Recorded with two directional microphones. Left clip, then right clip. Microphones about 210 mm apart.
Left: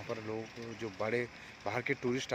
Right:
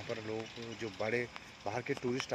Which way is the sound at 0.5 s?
45° left (ahead or behind).